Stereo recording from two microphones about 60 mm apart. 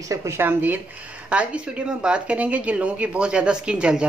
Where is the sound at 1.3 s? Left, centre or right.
Centre.